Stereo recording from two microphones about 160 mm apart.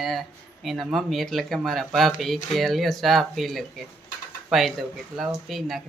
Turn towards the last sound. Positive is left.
turn(degrees=0)  # may be behind; listen again after turning